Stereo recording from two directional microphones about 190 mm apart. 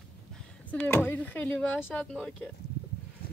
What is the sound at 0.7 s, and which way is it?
Speech, 10° left (ahead or behind).